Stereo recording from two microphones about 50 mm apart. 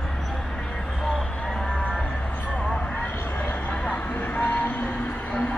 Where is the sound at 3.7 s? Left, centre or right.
Left.